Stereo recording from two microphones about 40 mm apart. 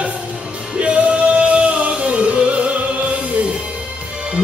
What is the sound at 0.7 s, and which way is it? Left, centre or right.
Music, right.